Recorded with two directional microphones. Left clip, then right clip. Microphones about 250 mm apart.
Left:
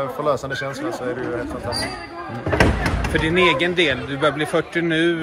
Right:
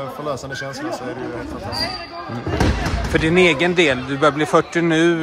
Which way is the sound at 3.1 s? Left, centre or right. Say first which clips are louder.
Right 2 dB; right.